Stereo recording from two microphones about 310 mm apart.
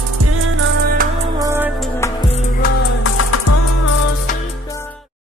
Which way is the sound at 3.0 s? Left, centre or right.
Left.